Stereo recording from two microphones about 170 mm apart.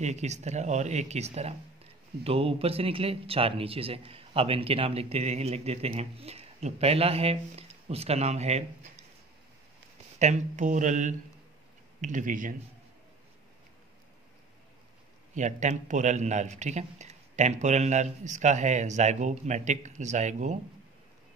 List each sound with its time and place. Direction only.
0.0 s speech: 40° right (ahead or behind)
10.1 s a man's voice: 45° right (ahead or behind)
15.3 s a man's voice: 45° right (ahead or behind)